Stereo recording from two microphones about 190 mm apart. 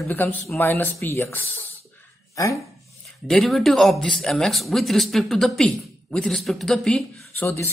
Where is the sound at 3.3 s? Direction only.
Centre (ahead or behind).